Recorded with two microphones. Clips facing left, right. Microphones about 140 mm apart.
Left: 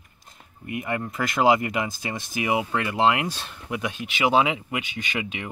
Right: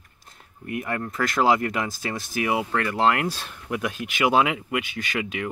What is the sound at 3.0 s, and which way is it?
Speech, centre (ahead or behind).